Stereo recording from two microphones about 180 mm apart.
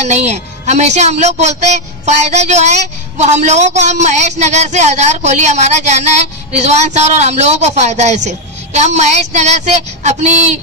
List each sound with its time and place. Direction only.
0.0 s speech: 40° right (ahead or behind)